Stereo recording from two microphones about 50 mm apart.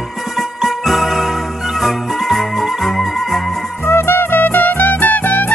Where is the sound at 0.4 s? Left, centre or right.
Centre.